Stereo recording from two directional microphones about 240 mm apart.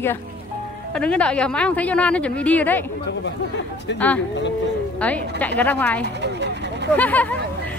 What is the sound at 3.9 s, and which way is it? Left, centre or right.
Speech, left.